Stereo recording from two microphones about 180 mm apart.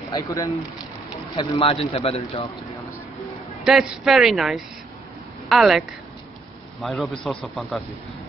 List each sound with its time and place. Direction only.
0.1 s a man's voice: 20° left (ahead or behind)
3.6 s speech: 5° right (ahead or behind)